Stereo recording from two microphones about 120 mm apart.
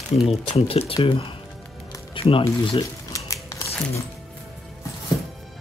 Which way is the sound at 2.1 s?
50° left (ahead or behind).